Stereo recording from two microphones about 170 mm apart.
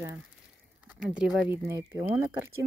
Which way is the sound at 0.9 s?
5° right (ahead or behind).